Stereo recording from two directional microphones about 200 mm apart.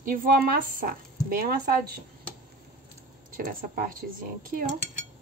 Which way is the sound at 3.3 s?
45° right (ahead or behind).